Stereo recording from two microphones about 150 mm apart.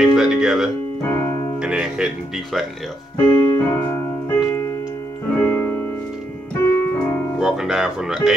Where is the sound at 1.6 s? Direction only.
5° right (ahead or behind).